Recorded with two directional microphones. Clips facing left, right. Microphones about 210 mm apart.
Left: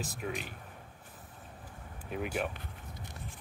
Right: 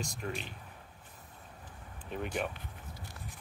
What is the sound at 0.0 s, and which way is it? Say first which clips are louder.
Speech: left 1 dB; 5° left (ahead or behind).